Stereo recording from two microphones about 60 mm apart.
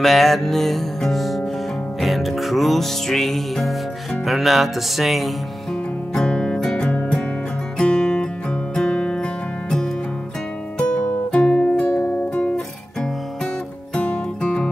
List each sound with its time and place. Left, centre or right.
0.0 s music: centre
6.1 s music: centre
11.9 s music: left
12.2 s music: left
13.9 s music: centre